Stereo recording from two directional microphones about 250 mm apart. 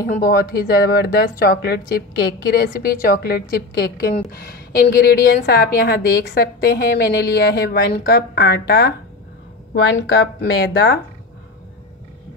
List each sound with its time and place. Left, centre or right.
0.0 s a woman's voice: left